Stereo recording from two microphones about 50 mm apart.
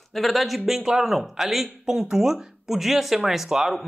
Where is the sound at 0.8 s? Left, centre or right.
Centre.